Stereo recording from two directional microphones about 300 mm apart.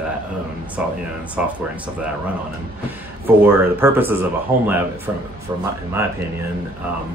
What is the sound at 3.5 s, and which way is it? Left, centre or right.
Speech, centre.